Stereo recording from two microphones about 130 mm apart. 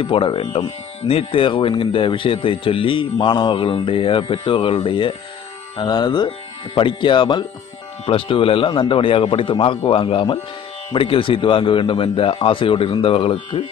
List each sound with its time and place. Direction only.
0.0 s a man's voice: 40° left (ahead or behind)